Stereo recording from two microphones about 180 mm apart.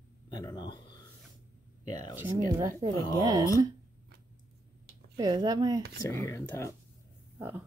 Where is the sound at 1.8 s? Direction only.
25° left (ahead or behind).